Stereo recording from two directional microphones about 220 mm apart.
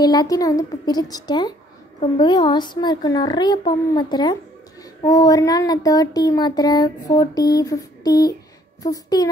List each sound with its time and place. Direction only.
0.0 s a child's voice: 15° left (ahead or behind)